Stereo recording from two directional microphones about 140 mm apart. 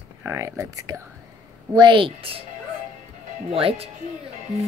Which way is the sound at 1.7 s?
35° right (ahead or behind).